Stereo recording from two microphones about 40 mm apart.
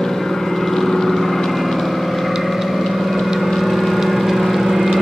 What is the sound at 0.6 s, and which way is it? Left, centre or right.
Vehicle, centre.